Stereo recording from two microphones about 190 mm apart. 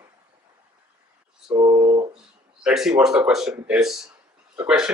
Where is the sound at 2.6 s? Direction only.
5° right (ahead or behind).